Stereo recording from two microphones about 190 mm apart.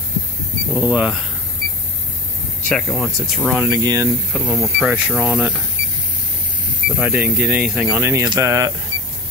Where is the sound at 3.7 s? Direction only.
15° right (ahead or behind).